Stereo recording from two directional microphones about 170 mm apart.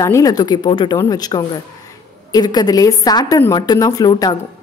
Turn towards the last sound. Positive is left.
turn(degrees=25)  # may be behind; listen again after turning